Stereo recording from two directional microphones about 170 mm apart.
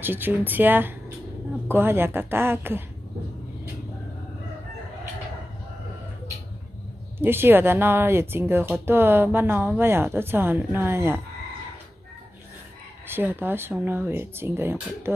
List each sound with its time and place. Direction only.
0.0 s a woman's voice: 10° right (ahead or behind)
7.2 s a woman's voice: 15° right (ahead or behind)
13.0 s a woman's voice: 15° right (ahead or behind)